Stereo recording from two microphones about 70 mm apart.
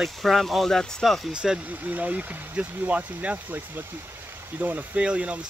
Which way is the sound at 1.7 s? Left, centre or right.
Right.